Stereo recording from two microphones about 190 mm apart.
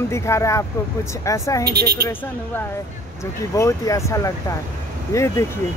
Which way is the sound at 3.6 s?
15° left (ahead or behind).